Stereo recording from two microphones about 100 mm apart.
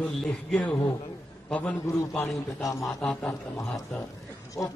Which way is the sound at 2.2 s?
35° left (ahead or behind).